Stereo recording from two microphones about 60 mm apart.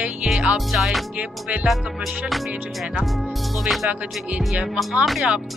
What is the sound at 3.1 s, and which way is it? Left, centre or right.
Speech, centre.